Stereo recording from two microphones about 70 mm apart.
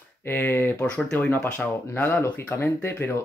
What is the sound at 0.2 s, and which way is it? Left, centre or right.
Speech, left.